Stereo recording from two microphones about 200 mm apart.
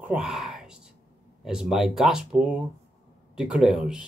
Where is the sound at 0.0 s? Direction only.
5° right (ahead or behind).